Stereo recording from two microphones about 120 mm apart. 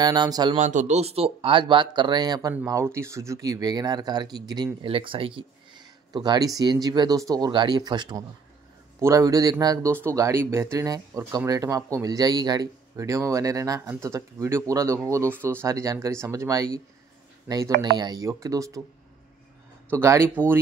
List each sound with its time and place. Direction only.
0.0 s speech: 35° right (ahead or behind)
0.6 s speech: 85° right; by 2.5 s 35° right (ahead or behind)
2.6 s speech: 25° right (ahead or behind)
4.8 s speech: 50° right (ahead or behind)
6.1 s speech: 35° right (ahead or behind)
9.8 s speech: 20° right (ahead or behind)
19.9 s speech: 20° right (ahead or behind)